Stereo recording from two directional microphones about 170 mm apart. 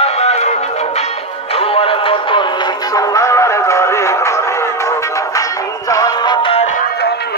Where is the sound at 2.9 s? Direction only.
20° left (ahead or behind).